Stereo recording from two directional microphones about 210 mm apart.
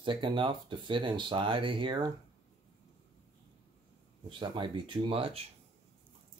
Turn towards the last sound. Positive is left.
turn(degrees=-25)  # may be behind; listen again after turning